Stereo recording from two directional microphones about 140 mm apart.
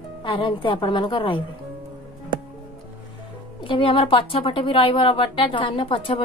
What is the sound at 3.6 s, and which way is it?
Speech, 35° left (ahead or behind).